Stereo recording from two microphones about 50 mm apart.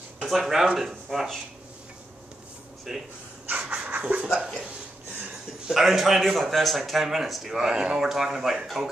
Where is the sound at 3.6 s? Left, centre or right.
Right.